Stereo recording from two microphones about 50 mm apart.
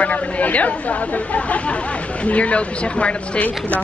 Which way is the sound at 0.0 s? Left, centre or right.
Left.